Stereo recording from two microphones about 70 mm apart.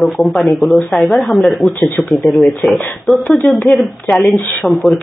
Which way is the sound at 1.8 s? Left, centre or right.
Left.